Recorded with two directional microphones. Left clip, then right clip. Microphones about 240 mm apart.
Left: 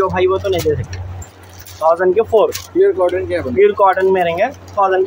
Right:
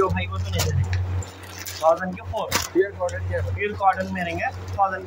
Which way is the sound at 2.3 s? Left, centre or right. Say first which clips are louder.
Left 15 dB; left.